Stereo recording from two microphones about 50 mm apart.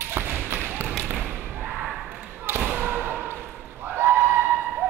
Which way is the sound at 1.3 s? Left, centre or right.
Right.